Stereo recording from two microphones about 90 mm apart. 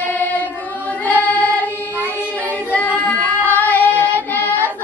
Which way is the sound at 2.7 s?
15° left (ahead or behind).